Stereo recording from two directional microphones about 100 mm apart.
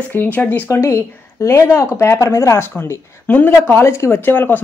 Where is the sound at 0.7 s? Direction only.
30° left (ahead or behind).